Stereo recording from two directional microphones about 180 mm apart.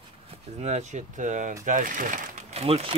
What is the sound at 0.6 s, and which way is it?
Speech, 40° right (ahead or behind).